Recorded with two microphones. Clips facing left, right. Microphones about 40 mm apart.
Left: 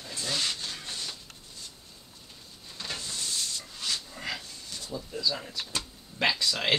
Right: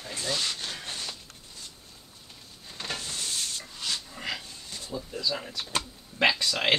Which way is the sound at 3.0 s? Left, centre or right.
Right.